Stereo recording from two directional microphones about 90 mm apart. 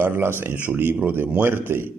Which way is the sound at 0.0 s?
25° right (ahead or behind).